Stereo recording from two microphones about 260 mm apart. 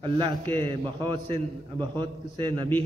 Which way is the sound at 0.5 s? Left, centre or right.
Centre.